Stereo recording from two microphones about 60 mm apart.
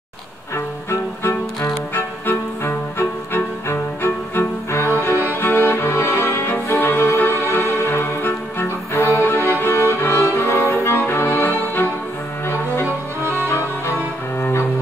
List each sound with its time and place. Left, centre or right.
0.8 s music: left